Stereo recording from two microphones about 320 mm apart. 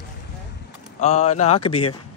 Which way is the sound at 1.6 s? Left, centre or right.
Left.